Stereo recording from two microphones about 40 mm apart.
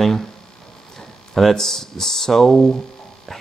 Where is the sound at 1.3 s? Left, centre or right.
Centre.